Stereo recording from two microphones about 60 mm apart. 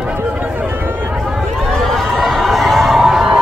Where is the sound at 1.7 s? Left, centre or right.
Centre.